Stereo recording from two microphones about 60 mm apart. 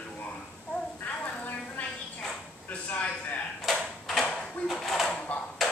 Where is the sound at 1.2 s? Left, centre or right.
Left.